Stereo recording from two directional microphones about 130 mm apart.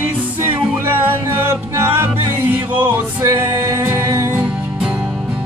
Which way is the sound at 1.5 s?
15° right (ahead or behind).